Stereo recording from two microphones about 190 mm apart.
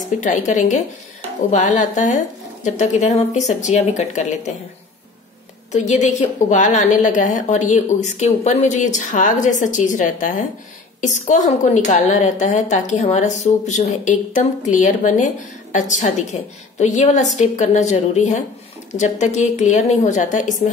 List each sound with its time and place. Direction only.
0.2 s a woman's voice: 40° left (ahead or behind)
5.7 s a woman's voice: 40° left (ahead or behind)